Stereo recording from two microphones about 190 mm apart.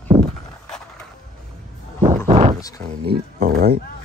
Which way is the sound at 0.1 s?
30° right (ahead or behind).